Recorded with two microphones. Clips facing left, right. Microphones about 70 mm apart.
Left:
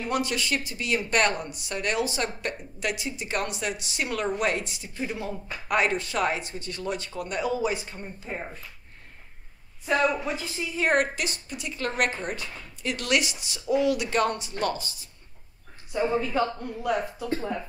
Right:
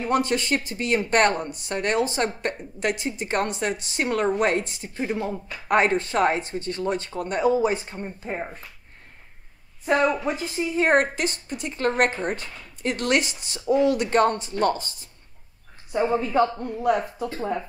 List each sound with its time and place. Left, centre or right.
0.0 s speech: right
8.3 s speech: centre
10.2 s a woman's voice: right
17.4 s speech: right